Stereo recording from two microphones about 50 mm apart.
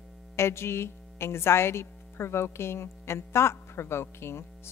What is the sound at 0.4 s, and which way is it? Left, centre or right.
A woman's voice, left.